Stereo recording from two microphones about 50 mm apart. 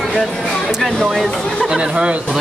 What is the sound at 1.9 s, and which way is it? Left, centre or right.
Speech, right.